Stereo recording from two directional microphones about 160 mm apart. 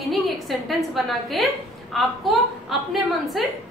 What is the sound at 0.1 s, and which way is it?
A woman's voice, centre (ahead or behind).